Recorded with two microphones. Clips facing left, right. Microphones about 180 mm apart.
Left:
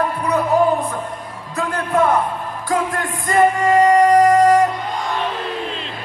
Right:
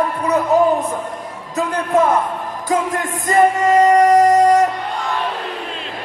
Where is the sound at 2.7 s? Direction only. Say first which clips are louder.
Right 2 dB; 20° right (ahead or behind).